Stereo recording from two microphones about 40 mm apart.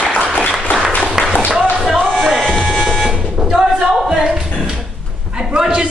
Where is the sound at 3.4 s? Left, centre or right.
Centre.